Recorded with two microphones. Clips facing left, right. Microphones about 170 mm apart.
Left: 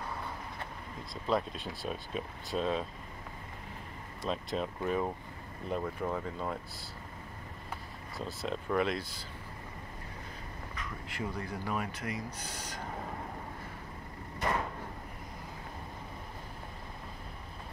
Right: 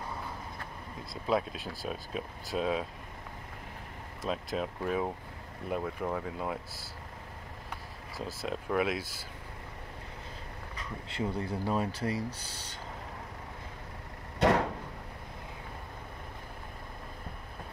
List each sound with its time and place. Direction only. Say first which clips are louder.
1.2 s speech: right 1 dB; 5° right (ahead or behind)
4.2 s speech: right 1 dB; centre (ahead or behind)
8.4 s speech: right 1 dB; 5° right (ahead or behind)
10.8 s speech: right 4 dB; 30° right (ahead or behind)
14.4 s a sound: right 8 dB; 80° right